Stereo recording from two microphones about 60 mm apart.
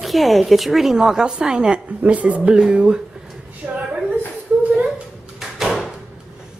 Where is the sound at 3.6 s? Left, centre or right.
Centre.